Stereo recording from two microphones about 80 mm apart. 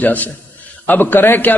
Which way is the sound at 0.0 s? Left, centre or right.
Left.